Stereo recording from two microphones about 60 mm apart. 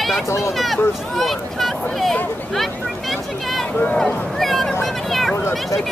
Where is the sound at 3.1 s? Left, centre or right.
Centre.